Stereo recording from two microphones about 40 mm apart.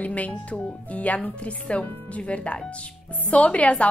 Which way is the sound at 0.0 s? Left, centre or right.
Left.